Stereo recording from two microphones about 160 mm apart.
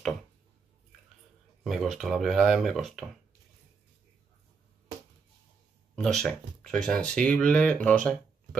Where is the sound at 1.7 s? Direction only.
Centre (ahead or behind).